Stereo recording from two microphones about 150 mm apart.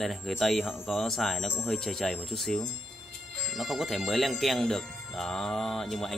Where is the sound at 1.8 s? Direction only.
5° left (ahead or behind).